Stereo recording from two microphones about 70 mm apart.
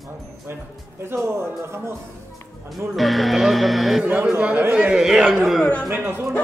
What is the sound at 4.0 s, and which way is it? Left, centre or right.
Speech, right.